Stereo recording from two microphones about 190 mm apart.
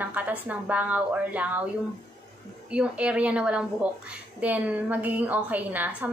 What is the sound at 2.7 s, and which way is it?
A woman's voice, 5° right (ahead or behind).